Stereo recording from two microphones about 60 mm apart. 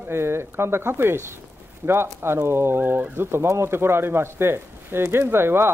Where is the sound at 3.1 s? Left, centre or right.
Right.